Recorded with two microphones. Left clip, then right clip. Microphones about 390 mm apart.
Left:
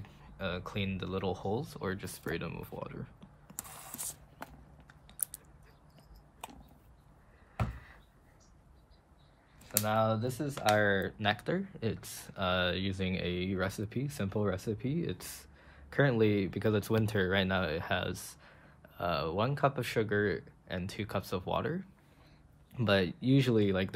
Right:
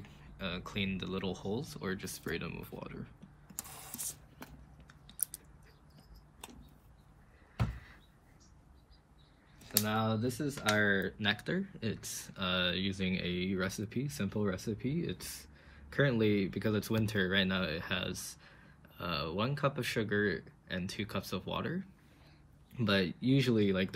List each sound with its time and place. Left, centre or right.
0.0 s speech: centre
3.5 s mechanisms: centre
4.4 s vehicle: centre
7.7 s a sound: centre
9.8 s speech: centre